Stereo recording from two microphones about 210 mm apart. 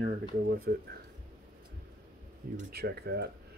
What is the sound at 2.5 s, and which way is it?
Speech, 50° right (ahead or behind).